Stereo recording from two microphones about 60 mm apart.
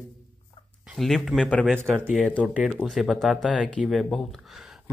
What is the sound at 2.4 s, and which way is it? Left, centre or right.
Speech, centre.